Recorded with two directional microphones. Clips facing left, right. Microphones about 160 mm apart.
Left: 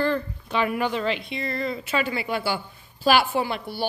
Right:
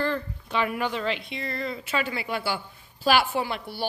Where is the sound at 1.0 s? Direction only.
10° left (ahead or behind).